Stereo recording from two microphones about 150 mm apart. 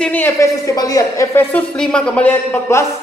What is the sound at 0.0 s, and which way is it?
Speech, 10° left (ahead or behind).